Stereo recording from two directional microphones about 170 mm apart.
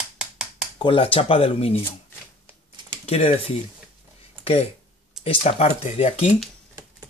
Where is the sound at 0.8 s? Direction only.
30° left (ahead or behind).